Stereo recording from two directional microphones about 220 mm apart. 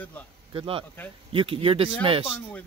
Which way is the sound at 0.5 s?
25° right (ahead or behind).